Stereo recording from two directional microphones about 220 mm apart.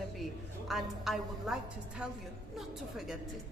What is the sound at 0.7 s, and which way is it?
Speech, centre (ahead or behind).